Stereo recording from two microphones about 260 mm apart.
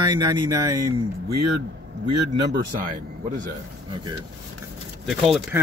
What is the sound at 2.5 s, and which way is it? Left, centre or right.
Speech, right.